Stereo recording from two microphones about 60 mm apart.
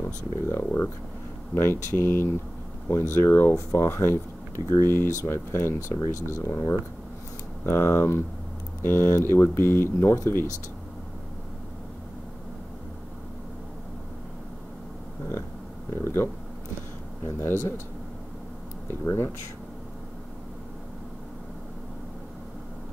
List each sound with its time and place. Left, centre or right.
0.0 s speech: left
5.9 s speech: left
7.6 s speech: left
16.0 s speech: left
18.9 s speech: left